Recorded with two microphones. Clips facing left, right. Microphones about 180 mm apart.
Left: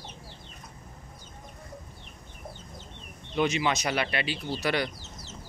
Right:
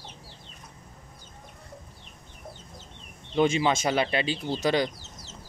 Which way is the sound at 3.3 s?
30° right (ahead or behind).